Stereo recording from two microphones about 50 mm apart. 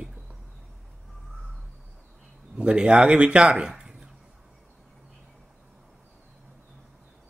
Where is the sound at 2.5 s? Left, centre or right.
Right.